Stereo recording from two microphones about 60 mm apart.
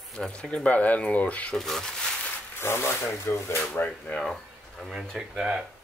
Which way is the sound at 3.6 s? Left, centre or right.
Left.